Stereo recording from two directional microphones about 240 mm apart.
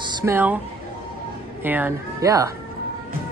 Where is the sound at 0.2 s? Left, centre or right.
Centre.